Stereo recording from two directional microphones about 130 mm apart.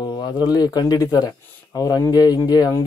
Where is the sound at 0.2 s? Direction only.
30° left (ahead or behind).